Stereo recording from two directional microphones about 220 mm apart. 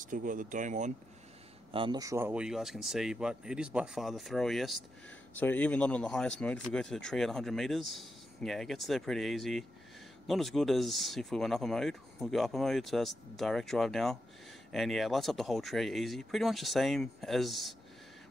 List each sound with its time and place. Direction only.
0.0 s speech: 35° right (ahead or behind)
1.7 s speech: 20° right (ahead or behind); by 17.7 s centre (ahead or behind)